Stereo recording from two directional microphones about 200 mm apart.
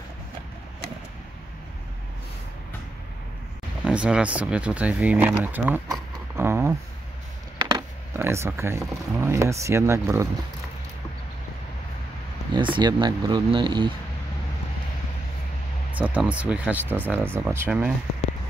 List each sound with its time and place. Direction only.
3.8 s speech: 5° right (ahead or behind)
12.5 s speech: 25° right (ahead or behind)
16.0 s speech: 5° right (ahead or behind)